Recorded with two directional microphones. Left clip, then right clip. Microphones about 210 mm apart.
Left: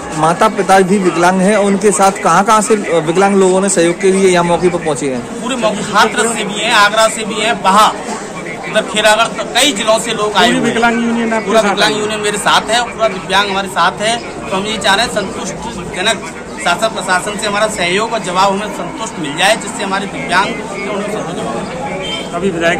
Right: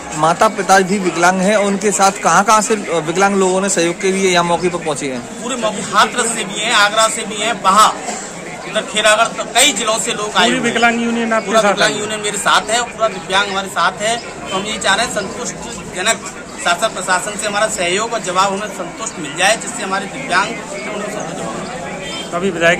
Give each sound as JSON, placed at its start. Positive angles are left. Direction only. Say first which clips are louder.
{"t": 0.2, "sound": "a man's voice", "louder": "left 2 dB", "side_deg": 0}
{"t": 10.5, "sound": "a man's voice", "louder": "left 1 dB", "side_deg": -50}
{"t": 11.7, "sound": "a man's voice", "louder": "left 3 dB", "side_deg": -5}
{"t": 16.6, "sound": "a man's voice", "louder": "left 2 dB", "side_deg": -5}
{"t": 22.4, "sound": "a man's voice", "louder": "right 1 dB", "side_deg": -50}